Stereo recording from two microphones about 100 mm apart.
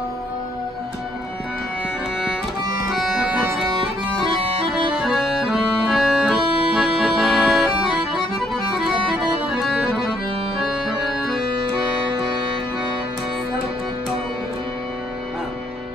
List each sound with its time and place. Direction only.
3.0 s music: centre (ahead or behind)
4.6 s accordion: 60° right (ahead or behind)
4.9 s accordion: centre (ahead or behind)
11.2 s accordion: centre (ahead or behind)